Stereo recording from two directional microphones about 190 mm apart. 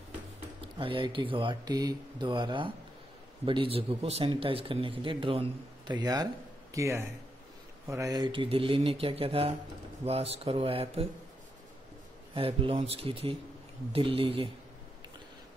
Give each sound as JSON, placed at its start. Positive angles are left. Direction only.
{"t": 0.6, "sound": "speech", "side_deg": -25}
{"t": 12.4, "sound": "speech", "side_deg": -30}